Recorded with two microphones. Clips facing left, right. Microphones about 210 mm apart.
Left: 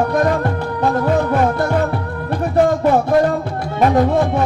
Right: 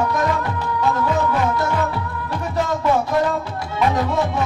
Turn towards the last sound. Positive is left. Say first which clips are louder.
# left 6 dB
turn(degrees=55)  # may be behind; listen again after turning